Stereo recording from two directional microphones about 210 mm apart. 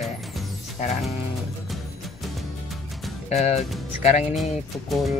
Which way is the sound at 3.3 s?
30° left (ahead or behind).